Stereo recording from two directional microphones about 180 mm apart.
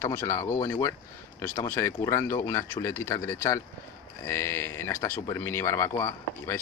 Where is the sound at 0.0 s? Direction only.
15° left (ahead or behind).